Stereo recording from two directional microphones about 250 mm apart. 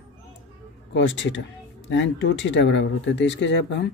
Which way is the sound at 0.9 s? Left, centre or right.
Left.